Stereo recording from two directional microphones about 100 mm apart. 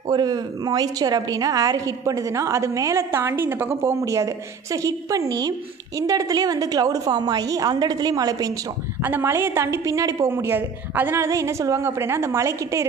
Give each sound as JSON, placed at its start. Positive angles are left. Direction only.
{"t": 0.1, "sound": "a woman's voice", "side_deg": -40}
{"t": 9.0, "sound": "a woman's voice", "side_deg": -20}